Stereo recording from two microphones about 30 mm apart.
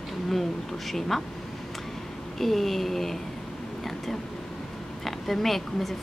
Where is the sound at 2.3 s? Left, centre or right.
Centre.